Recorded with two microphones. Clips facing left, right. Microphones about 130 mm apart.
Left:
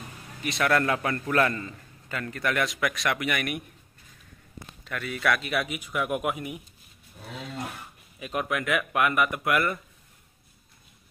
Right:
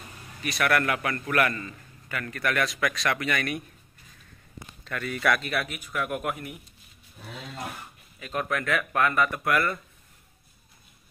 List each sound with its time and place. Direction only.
0.4 s a man's voice: 20° left (ahead or behind)
4.8 s a man's voice: 5° left (ahead or behind)
8.2 s a man's voice: 10° left (ahead or behind)